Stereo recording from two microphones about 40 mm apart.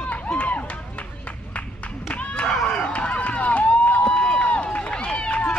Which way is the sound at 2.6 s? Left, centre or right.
Left.